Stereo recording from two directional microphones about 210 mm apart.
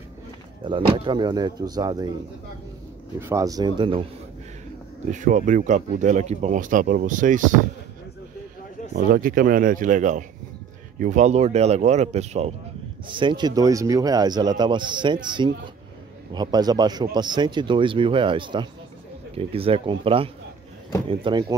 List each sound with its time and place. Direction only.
0.7 s speech: 25° right (ahead or behind)
3.2 s speech: 15° right (ahead or behind)
5.1 s speech: 35° right (ahead or behind)
8.9 s speech: 45° right (ahead or behind); by 21.5 s 20° right (ahead or behind)